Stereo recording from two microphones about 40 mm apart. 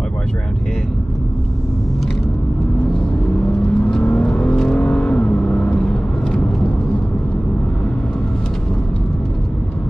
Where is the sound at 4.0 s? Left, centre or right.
Left.